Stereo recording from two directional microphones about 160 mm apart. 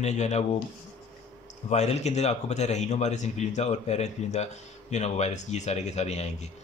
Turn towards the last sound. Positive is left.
turn(degrees=45)  # may be behind; listen again after turning